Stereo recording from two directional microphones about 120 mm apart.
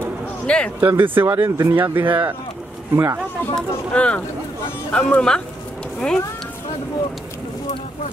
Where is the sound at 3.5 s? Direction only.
10° left (ahead or behind).